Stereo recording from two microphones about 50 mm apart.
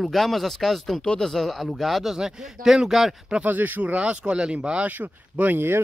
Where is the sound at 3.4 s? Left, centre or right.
Right.